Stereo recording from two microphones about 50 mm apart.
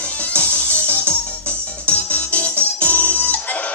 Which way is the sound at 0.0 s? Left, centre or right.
Left.